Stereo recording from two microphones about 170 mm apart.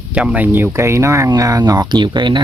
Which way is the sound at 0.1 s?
5° right (ahead or behind).